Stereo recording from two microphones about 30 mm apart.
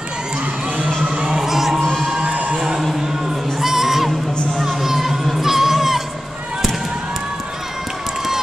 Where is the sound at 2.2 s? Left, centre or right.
Right.